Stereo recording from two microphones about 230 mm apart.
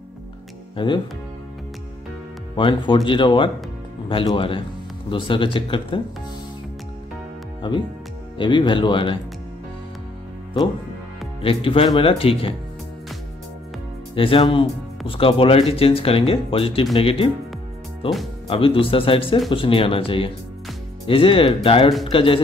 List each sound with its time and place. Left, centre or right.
0.7 s speech: left
2.5 s speech: left
7.6 s speech: centre
11.6 s speech: left
14.1 s speech: left
18.5 s speech: left